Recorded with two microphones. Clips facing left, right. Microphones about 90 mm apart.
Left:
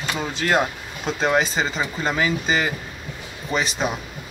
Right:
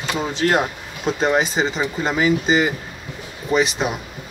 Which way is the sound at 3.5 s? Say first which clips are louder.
Right 5 dB; 5° right (ahead or behind).